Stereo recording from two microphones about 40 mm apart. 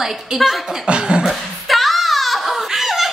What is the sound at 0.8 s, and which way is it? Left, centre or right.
Speech, right.